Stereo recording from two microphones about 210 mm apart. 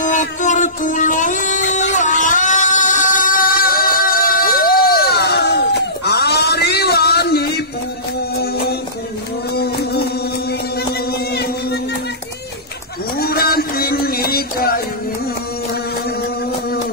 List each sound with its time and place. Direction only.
0.0 s music: 35° left (ahead or behind)
9.6 s music: 50° left (ahead or behind)
13.2 s music: 45° left (ahead or behind)